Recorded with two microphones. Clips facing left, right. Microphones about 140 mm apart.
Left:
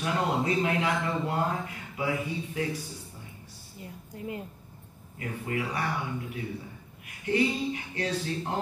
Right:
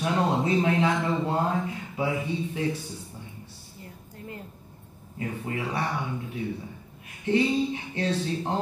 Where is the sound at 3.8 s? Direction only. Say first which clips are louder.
Left 4 dB; 15° left (ahead or behind).